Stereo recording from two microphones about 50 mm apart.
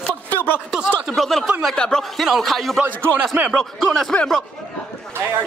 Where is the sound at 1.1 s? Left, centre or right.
Centre.